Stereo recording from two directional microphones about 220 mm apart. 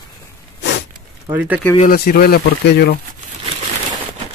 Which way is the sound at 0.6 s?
50° left (ahead or behind).